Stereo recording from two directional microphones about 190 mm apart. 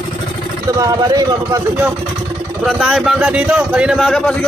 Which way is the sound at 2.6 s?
Centre (ahead or behind).